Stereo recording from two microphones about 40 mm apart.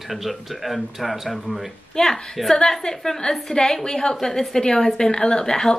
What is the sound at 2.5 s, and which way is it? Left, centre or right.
A woman's voice, centre.